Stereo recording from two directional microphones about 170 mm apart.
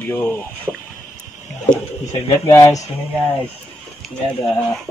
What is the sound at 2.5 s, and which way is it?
Speech, 20° left (ahead or behind).